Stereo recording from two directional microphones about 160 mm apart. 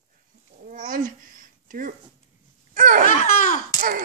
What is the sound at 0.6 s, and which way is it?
A child's voice, 60° right (ahead or behind).